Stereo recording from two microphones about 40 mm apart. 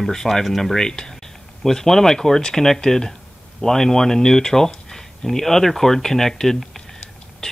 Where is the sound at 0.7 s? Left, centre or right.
Centre.